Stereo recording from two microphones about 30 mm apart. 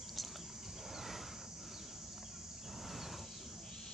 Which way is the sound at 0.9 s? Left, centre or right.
Centre.